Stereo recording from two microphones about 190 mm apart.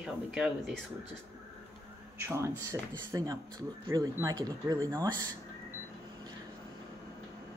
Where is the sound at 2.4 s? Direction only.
15° right (ahead or behind).